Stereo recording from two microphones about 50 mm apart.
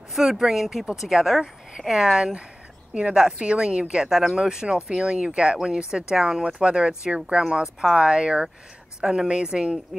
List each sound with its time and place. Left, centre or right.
0.1 s a woman's voice: centre
4.1 s speech: centre